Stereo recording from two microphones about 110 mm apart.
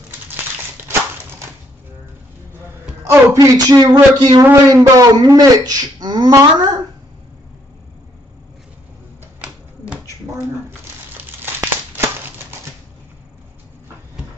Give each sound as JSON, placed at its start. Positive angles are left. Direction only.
{"t": 3.0, "sound": "speech", "side_deg": -25}
{"t": 4.5, "sound": "speech", "side_deg": -25}
{"t": 11.4, "sound": "crumpling", "side_deg": -20}